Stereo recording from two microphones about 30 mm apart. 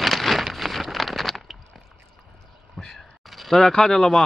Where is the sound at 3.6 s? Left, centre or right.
Centre.